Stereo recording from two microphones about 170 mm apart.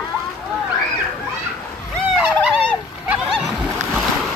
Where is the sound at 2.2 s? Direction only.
5° right (ahead or behind).